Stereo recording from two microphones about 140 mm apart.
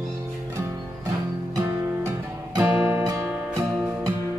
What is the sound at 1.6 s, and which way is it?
Music, 20° right (ahead or behind).